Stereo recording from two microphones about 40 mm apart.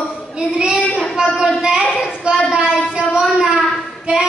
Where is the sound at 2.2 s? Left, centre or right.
Right.